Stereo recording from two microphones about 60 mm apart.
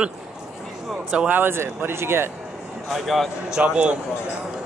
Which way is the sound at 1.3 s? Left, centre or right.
Right.